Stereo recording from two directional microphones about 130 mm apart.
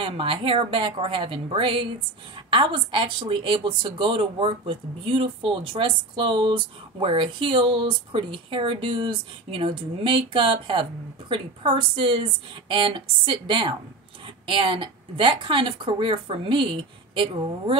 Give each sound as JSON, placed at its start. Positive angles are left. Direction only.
{"t": 0.0, "sound": "speech", "side_deg": -40}